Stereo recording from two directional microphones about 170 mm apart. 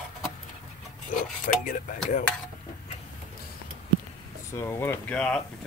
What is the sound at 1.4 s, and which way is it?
Speech, 50° left (ahead or behind).